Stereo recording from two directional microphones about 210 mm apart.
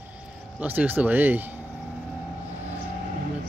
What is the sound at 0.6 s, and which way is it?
Speech, 10° right (ahead or behind).